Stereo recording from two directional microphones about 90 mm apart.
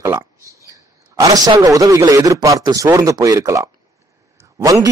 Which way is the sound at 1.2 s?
45° right (ahead or behind).